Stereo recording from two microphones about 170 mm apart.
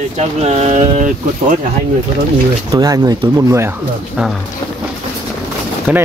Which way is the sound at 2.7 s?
25° right (ahead or behind).